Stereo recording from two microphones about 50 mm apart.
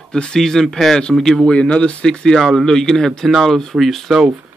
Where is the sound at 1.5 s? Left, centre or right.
Left.